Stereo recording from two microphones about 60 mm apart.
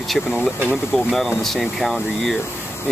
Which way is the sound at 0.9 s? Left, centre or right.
Centre.